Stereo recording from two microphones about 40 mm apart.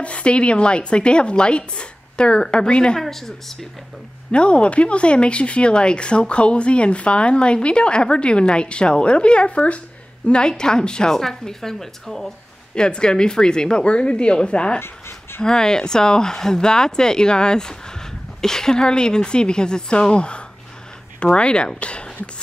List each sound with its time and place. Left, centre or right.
0.0 s speech: left
3.0 s speech: centre
4.3 s speech: left; by 12.3 s centre
12.7 s speech: left
14.8 s a sound: left
15.4 s speech: centre